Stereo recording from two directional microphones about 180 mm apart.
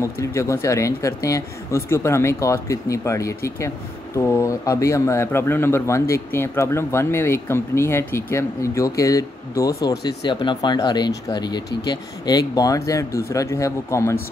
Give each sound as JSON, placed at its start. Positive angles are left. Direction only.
{"t": 0.0, "sound": "speech", "side_deg": 15}